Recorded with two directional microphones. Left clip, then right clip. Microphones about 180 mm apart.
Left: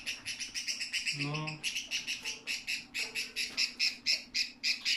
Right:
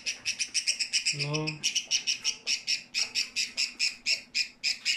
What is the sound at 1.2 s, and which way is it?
Bird, 60° right (ahead or behind).